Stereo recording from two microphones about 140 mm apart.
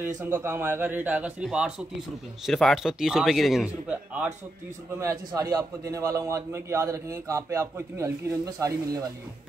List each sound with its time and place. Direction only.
0.2 s speech: 15° right (ahead or behind)
4.9 s a man's voice: 25° right (ahead or behind)